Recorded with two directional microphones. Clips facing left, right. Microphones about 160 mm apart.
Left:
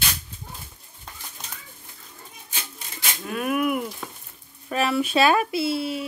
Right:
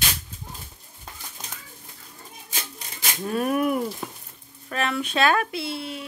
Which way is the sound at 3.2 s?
35° right (ahead or behind).